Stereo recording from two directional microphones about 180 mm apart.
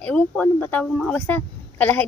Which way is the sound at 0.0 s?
10° left (ahead or behind).